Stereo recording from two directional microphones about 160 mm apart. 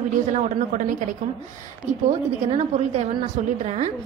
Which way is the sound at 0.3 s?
50° right (ahead or behind).